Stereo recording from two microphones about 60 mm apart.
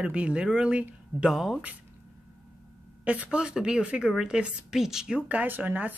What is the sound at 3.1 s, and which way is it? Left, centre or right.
Speech, centre.